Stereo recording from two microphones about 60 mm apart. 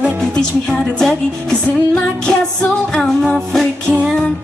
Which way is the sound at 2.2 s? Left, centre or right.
Centre.